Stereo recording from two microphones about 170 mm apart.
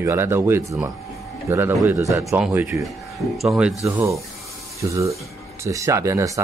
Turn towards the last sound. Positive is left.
turn(degrees=-20)  # may be behind; listen again after turning